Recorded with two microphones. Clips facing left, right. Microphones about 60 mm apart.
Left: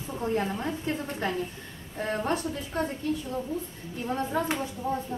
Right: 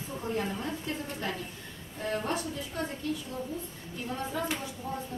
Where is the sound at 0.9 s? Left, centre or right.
Left.